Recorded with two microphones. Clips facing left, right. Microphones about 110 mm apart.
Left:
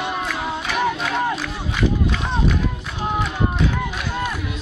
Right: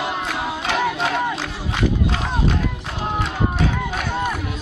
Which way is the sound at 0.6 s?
35° right (ahead or behind).